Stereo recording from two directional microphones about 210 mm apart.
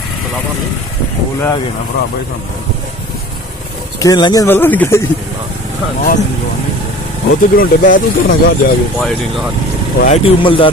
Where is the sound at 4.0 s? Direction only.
20° left (ahead or behind).